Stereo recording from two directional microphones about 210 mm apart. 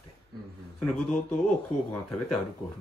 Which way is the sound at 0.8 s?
5° left (ahead or behind).